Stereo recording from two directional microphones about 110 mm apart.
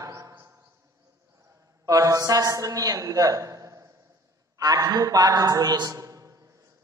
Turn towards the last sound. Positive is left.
turn(degrees=-30)  # may be behind; listen again after turning